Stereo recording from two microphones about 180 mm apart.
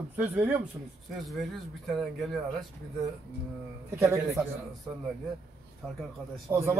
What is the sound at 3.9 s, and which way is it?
Speech, 15° right (ahead or behind).